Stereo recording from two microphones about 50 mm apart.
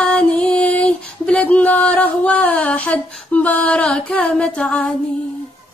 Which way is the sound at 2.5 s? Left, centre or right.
Left.